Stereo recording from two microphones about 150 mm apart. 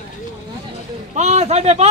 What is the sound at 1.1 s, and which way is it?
Speech, 50° right (ahead or behind).